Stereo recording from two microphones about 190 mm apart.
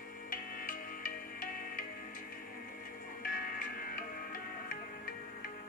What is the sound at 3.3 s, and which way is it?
Music, 50° left (ahead or behind).